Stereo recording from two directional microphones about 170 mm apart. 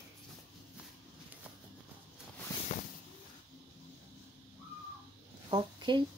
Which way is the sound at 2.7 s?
45° left (ahead or behind).